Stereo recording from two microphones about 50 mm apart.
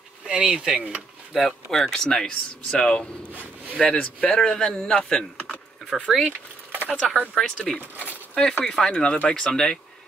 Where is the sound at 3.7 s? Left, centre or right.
Centre.